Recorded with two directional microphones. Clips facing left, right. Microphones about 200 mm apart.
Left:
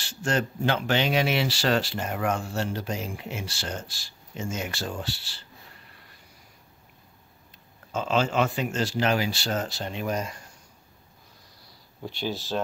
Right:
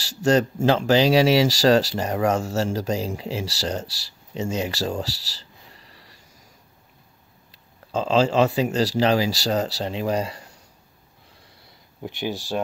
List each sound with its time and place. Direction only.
0.1 s speech: 40° right (ahead or behind)
7.9 s speech: 30° right (ahead or behind)
12.0 s speech: 15° right (ahead or behind)